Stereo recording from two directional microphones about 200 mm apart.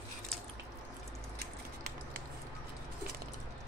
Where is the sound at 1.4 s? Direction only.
50° right (ahead or behind).